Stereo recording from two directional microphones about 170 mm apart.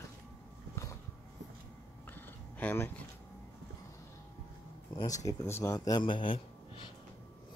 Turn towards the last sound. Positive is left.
turn(degrees=30)  # may be behind; listen again after turning